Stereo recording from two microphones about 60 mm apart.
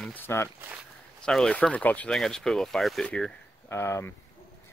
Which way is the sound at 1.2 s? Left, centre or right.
Centre.